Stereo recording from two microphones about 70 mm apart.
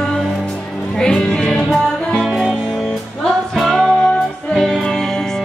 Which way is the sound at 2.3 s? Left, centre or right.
Centre.